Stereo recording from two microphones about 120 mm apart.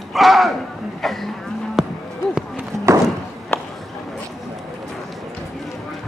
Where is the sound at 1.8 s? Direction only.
5° right (ahead or behind).